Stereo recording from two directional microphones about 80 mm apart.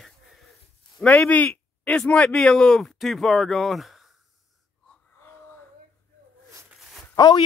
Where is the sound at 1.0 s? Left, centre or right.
Centre.